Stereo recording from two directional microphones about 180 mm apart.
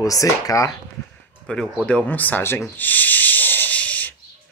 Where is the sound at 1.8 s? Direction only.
10° left (ahead or behind).